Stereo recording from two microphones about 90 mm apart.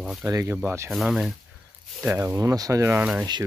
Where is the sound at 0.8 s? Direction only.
5° right (ahead or behind).